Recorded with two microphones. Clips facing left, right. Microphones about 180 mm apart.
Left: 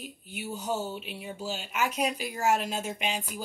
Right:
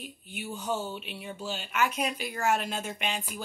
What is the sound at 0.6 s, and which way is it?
Speech, 40° left (ahead or behind).